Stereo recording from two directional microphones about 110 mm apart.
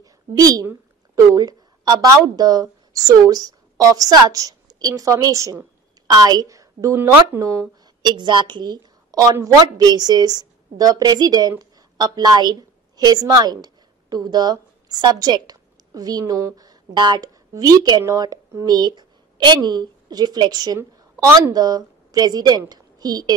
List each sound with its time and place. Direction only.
0.0 s a sound: 35° right (ahead or behind)
1.1 s speech: 35° right (ahead or behind)
8.0 s a woman's voice: 45° right (ahead or behind)